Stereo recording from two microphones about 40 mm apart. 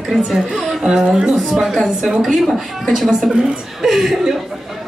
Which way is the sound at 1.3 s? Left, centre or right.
Centre.